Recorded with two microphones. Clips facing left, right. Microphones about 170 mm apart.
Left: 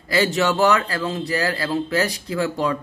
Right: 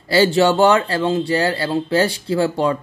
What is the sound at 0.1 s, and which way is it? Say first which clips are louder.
Speech: right 5 dB; 30° right (ahead or behind).